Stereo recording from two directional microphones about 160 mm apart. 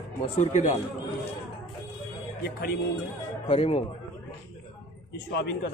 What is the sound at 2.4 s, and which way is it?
Speech, 85° left.